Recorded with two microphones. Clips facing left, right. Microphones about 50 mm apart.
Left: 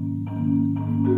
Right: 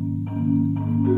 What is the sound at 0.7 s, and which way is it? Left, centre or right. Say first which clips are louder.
Music: right 1 dB; centre.